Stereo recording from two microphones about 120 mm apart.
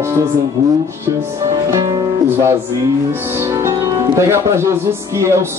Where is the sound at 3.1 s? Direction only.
20° right (ahead or behind).